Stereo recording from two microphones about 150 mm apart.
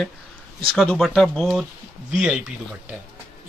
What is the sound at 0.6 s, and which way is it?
Speech, 5° left (ahead or behind).